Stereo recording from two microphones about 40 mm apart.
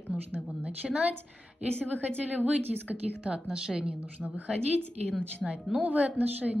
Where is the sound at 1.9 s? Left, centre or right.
Right.